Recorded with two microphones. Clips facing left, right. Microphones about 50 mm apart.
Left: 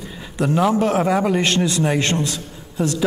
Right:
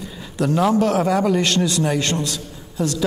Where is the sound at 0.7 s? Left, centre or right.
Centre.